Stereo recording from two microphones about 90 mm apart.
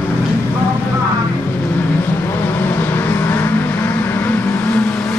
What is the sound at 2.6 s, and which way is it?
Vehicle, 25° left (ahead or behind).